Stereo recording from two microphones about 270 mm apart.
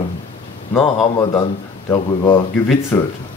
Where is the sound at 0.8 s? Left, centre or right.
Centre.